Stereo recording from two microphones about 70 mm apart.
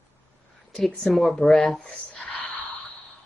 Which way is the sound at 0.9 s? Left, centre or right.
Centre.